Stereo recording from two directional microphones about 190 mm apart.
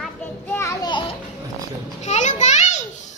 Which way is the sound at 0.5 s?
20° left (ahead or behind).